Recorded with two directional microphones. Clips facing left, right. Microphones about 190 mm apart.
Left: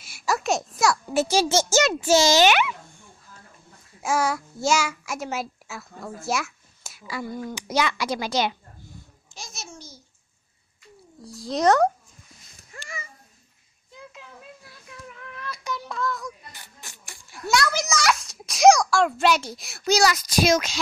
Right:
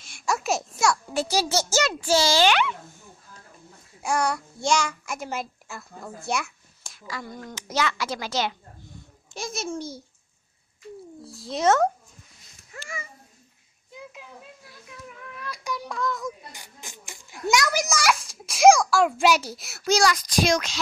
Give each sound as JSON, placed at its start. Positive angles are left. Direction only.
{"t": 0.0, "sound": "a sound", "side_deg": 5}
{"t": 1.3, "sound": "a child's voice", "side_deg": 25}
{"t": 2.4, "sound": "a child's voice", "side_deg": 10}
{"t": 4.0, "sound": "a child's voice", "side_deg": 0}
{"t": 9.3, "sound": "a child's voice", "side_deg": -55}
{"t": 11.2, "sound": "a child's voice", "side_deg": -5}
{"t": 12.7, "sound": "a sound", "side_deg": -5}
{"t": 15.3, "sound": "child singing", "side_deg": -10}
{"t": 16.3, "sound": "a child's voice", "side_deg": -15}